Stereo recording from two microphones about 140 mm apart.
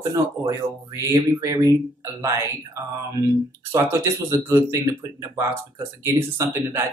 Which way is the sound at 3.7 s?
20° right (ahead or behind).